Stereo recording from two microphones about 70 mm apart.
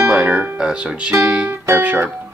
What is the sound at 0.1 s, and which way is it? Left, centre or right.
Music, centre.